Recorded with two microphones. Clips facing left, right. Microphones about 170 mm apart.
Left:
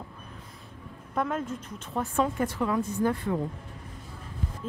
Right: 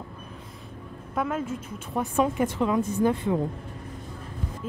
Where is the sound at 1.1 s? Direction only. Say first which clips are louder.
Right 1 dB; 5° right (ahead or behind); by 3.3 s 20° right (ahead or behind).